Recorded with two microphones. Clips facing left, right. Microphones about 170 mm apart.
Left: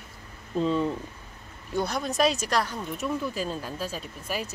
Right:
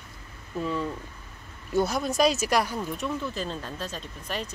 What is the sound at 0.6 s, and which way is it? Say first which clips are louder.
Speech: left 4 dB; 20° left (ahead or behind).